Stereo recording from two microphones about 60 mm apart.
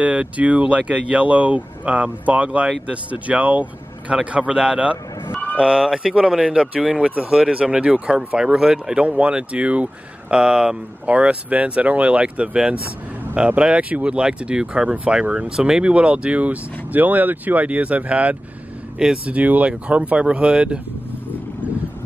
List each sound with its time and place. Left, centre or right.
0.0 s speech: centre
5.3 s fowl: left
5.6 s speech: centre